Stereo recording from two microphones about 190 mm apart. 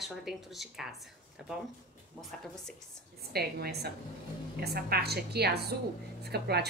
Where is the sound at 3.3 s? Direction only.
55° right (ahead or behind).